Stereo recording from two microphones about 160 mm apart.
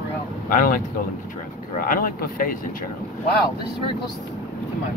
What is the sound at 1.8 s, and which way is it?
Speech, 60° left (ahead or behind).